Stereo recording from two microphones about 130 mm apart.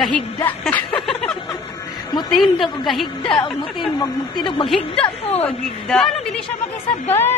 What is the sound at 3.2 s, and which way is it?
Speech, 35° left (ahead or behind).